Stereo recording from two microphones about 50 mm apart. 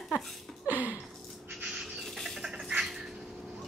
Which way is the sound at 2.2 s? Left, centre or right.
Centre.